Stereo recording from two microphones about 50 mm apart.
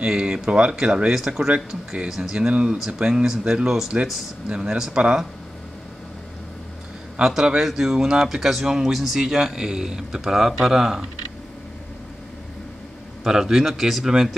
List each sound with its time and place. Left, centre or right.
0.0 s speech: centre
7.2 s speech: centre
13.2 s speech: centre